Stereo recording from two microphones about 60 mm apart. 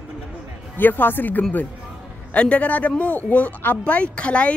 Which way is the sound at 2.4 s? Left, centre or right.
Left.